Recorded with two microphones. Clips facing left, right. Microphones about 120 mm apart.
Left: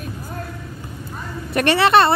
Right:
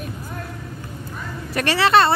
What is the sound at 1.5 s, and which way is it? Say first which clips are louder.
Speech: left 2 dB; 25° left (ahead or behind).